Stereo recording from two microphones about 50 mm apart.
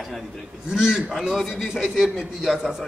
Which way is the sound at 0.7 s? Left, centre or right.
Centre.